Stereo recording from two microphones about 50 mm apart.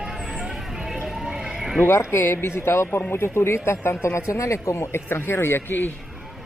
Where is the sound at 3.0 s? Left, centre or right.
Left.